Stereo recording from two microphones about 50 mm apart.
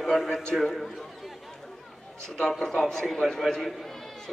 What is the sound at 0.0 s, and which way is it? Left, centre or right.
Speech, centre.